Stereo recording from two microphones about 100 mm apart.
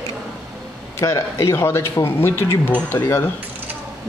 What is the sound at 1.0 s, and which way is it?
Speech, 30° left (ahead or behind).